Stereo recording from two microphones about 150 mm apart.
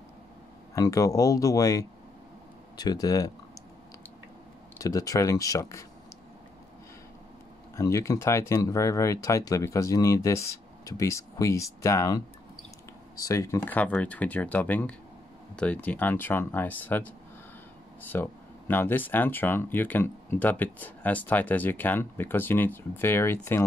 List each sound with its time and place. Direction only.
0.7 s speech: 20° left (ahead or behind)
4.7 s speech: 20° left (ahead or behind)
7.7 s speech: 20° left (ahead or behind)
13.7 s speech: 10° left (ahead or behind)
18.1 s speech: 15° left (ahead or behind)